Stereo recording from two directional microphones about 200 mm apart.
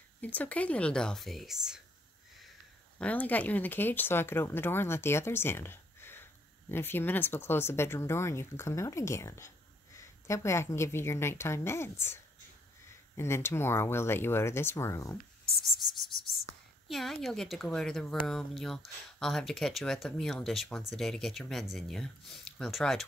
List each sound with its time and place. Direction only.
0.2 s speech: 10° left (ahead or behind)
3.0 s speech: 10° left (ahead or behind)
16.3 s a woman's voice: centre (ahead or behind)